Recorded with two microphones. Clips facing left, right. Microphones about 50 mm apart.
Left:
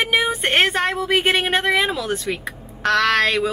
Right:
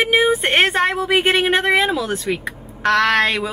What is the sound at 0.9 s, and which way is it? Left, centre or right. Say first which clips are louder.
Speech: right 2 dB; right.